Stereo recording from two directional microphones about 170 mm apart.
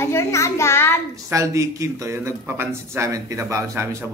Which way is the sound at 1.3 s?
20° right (ahead or behind).